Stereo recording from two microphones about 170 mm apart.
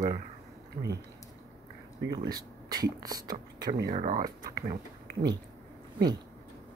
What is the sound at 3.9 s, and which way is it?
Speech, 50° right (ahead or behind).